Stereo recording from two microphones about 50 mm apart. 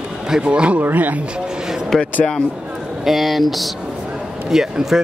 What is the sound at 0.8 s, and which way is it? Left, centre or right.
Speech, right.